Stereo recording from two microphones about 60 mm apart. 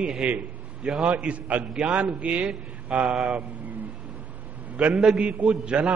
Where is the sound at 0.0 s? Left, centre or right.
Centre.